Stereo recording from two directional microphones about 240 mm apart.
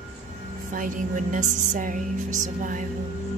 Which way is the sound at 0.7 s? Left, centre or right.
Right.